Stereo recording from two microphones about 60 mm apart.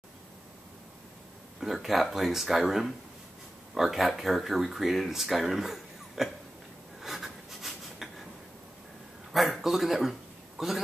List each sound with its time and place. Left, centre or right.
1.6 s speech: centre
7.0 s rub: centre
9.3 s a sound: centre
10.6 s speech: centre